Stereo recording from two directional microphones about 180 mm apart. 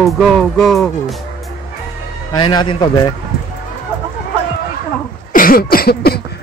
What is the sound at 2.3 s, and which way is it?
Speech, 25° left (ahead or behind).